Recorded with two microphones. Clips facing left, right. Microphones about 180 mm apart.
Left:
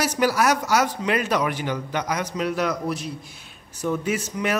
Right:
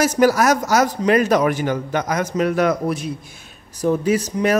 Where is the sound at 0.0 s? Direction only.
45° right (ahead or behind).